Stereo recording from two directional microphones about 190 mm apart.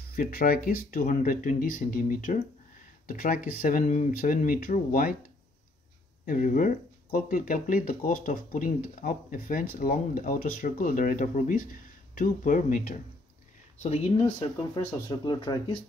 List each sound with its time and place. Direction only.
0.1 s speech: 50° left (ahead or behind)
6.2 s speech: 45° left (ahead or behind)
15.0 s speech: 20° left (ahead or behind)